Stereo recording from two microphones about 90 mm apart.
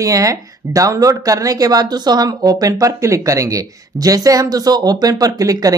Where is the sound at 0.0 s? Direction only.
40° right (ahead or behind).